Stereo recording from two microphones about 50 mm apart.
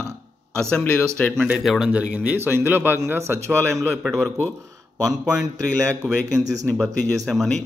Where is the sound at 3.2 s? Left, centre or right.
Right.